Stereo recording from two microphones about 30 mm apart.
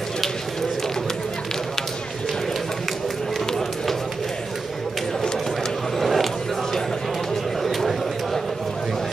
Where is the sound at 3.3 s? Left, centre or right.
Centre.